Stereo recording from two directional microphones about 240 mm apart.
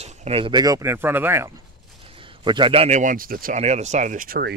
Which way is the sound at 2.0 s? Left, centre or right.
Right.